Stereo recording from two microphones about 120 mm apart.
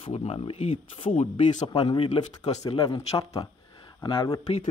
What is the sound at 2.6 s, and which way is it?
Speech, 35° left (ahead or behind).